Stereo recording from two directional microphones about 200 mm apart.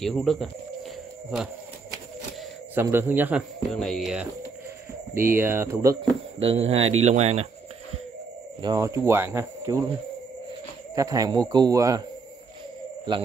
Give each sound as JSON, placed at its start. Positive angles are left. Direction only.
{"t": 0.0, "sound": "speech", "side_deg": 0}
{"t": 2.7, "sound": "speech", "side_deg": -10}
{"t": 5.3, "sound": "speech", "side_deg": -10}
{"t": 6.4, "sound": "speech", "side_deg": -30}
{"t": 8.6, "sound": "speech", "side_deg": -15}
{"t": 11.0, "sound": "speech", "side_deg": -15}